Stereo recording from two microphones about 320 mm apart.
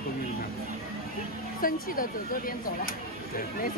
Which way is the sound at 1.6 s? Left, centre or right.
Left.